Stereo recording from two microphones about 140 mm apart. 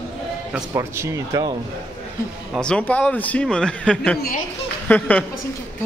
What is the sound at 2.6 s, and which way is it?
A man's voice, 10° left (ahead or behind).